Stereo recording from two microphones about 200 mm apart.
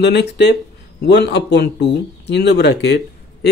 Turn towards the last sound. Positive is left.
turn(degrees=60)  # may be behind; listen again after turning